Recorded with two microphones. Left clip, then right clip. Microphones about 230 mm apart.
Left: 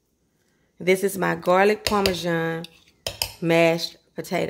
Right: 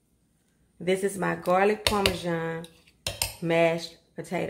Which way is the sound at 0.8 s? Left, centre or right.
Left.